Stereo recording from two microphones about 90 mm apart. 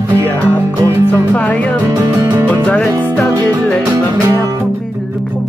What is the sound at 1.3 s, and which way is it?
Music, 15° left (ahead or behind).